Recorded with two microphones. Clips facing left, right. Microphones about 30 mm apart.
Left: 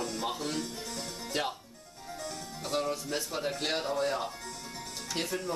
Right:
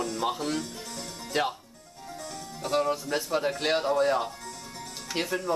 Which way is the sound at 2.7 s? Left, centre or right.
Centre.